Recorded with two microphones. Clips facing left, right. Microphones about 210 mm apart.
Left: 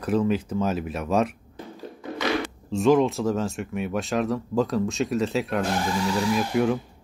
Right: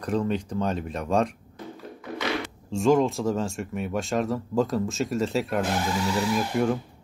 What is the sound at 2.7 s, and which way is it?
Speech, centre (ahead or behind).